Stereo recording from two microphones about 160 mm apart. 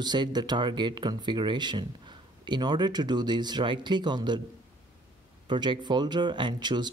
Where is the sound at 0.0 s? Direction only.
25° right (ahead or behind).